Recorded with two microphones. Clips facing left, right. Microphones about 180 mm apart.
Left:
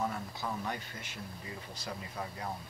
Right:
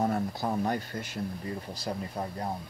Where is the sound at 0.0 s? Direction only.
40° right (ahead or behind).